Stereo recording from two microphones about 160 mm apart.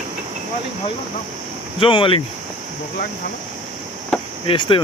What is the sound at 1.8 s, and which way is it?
Speech, 35° left (ahead or behind).